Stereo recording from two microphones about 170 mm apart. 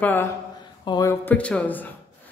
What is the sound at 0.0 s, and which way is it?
Speech, 10° left (ahead or behind).